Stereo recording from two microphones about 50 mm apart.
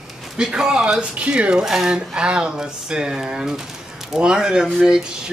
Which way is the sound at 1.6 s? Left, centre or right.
Centre.